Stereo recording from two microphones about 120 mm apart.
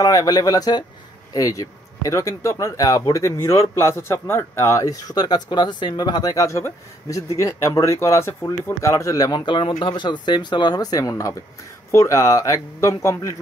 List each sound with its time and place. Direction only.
0.0 s speech: 30° left (ahead or behind)